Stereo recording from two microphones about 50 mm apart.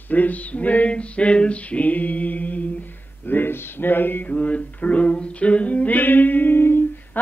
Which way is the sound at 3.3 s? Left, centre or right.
Left.